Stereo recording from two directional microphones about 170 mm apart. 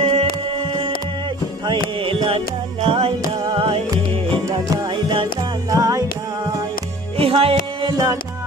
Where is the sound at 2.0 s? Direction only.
30° right (ahead or behind).